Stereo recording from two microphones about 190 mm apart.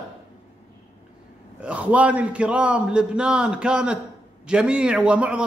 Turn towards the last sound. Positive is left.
turn(degrees=-5)  # may be behind; listen again after turning